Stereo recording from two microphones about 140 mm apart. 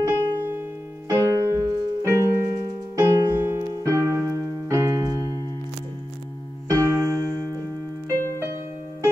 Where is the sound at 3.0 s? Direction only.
20° right (ahead or behind).